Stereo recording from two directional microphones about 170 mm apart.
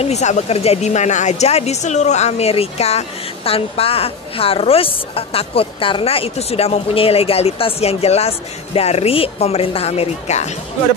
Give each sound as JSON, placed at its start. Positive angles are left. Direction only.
{"t": 0.0, "sound": "speech", "side_deg": 40}